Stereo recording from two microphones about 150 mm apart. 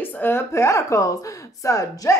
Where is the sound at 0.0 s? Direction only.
10° left (ahead or behind).